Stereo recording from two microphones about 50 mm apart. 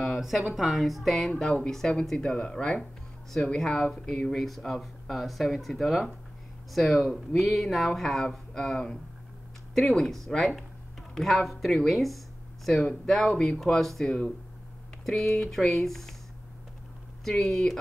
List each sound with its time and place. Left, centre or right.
0.0 s a sound: centre
0.6 s speech: centre
1.4 s speech: centre
3.4 s speech: centre
15.0 s speech: centre
17.2 s speech: centre